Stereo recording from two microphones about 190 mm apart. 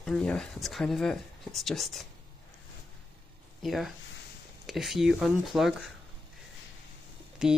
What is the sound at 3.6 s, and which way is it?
Speech, centre (ahead or behind).